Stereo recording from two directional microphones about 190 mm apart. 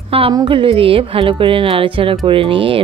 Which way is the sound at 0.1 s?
25° right (ahead or behind).